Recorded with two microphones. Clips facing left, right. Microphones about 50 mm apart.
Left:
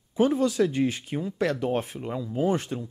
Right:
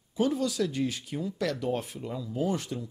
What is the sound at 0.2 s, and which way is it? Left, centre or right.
Speech, left.